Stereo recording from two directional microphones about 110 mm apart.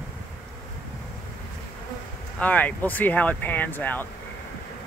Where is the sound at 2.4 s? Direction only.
15° left (ahead or behind).